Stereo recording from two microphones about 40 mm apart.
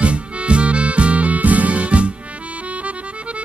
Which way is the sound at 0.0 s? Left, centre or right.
Right.